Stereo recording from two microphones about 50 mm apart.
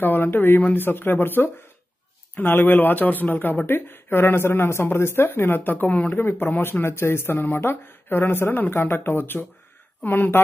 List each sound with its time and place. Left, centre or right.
0.0 s speech: left
6.1 s speech: left